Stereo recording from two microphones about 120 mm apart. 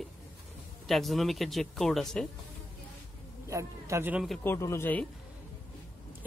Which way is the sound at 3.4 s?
25° right (ahead or behind).